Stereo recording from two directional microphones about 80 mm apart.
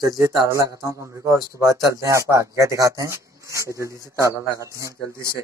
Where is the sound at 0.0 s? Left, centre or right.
Right.